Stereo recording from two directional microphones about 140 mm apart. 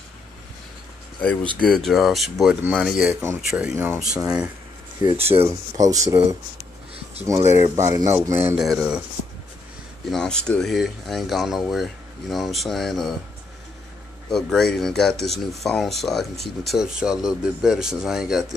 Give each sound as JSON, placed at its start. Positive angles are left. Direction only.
{"t": 1.6, "sound": "speech", "side_deg": 5}
{"t": 5.0, "sound": "speech", "side_deg": -45}
{"t": 5.4, "sound": "speech", "side_deg": -25}
{"t": 7.2, "sound": "speech", "side_deg": -20}
{"t": 8.5, "sound": "speech", "side_deg": 0}
{"t": 10.1, "sound": "speech", "side_deg": 5}
{"t": 14.3, "sound": "speech", "side_deg": 5}